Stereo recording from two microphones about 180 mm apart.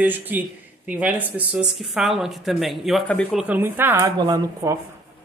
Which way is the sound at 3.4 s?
10° right (ahead or behind).